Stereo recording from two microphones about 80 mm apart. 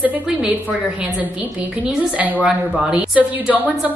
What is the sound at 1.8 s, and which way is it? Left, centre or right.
A woman's voice, centre.